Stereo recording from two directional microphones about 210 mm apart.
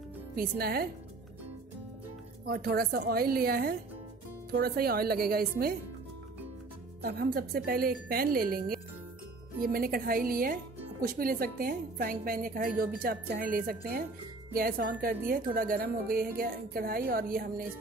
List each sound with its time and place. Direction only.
0.4 s a woman's voice: 45° right (ahead or behind)
2.4 s a woman's voice: 45° right (ahead or behind)
7.0 s a woman's voice: 50° right (ahead or behind)